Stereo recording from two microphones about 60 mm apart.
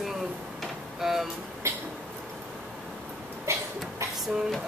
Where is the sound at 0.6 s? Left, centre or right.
Centre.